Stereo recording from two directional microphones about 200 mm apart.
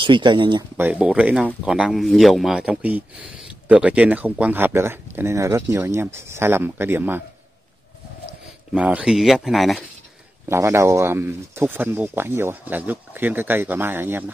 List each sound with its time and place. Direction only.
0.0 s speech: 25° right (ahead or behind)
0.7 s speech: 10° right (ahead or behind)
8.7 s speech: 5° right (ahead or behind)
10.5 s speech: 15° right (ahead or behind)